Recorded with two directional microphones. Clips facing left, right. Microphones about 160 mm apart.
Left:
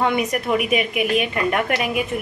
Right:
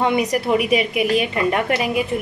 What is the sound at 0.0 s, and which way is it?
A woman's voice, 30° right (ahead or behind).